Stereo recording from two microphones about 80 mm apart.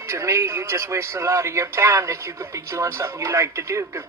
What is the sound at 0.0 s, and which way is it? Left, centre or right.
Speech, right.